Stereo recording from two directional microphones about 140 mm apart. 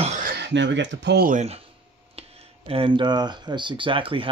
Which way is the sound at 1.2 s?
70° right (ahead or behind).